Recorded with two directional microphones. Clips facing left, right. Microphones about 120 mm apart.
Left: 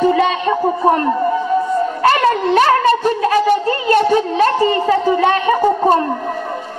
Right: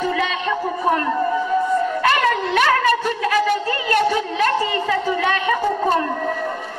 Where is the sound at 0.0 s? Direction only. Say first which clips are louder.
Left 8 dB; 35° left (ahead or behind).